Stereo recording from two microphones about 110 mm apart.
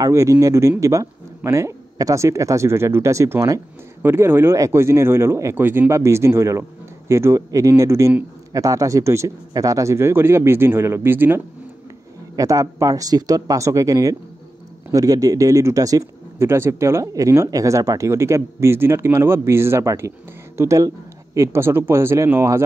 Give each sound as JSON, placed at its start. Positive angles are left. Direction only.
{"t": 0.0, "sound": "speech", "side_deg": -30}
{"t": 12.4, "sound": "speech", "side_deg": -30}